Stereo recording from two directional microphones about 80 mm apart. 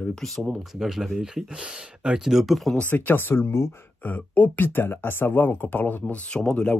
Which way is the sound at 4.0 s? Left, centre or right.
Centre.